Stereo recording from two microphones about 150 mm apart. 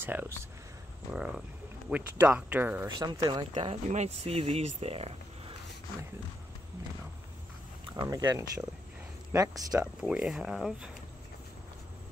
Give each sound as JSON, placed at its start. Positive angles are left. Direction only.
{"t": 0.0, "sound": "speech", "side_deg": -15}
{"t": 2.9, "sound": "speech", "side_deg": -30}
{"t": 3.5, "sound": "speech", "side_deg": -50}
{"t": 7.9, "sound": "speech", "side_deg": -25}
{"t": 9.9, "sound": "speech", "side_deg": -5}